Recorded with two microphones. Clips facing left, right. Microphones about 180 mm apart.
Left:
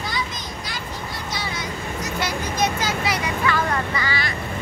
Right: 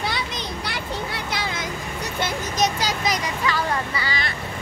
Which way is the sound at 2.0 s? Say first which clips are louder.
Even; 50° right (ahead or behind).